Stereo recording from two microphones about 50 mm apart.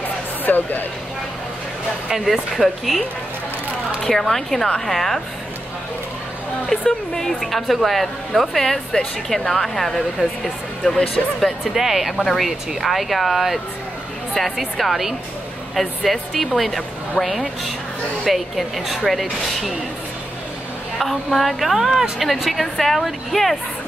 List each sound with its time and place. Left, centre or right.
0.5 s speech: left
2.0 s a woman's voice: centre
4.0 s speech: centre
6.9 s a woman's voice: centre
21.0 s a woman's voice: centre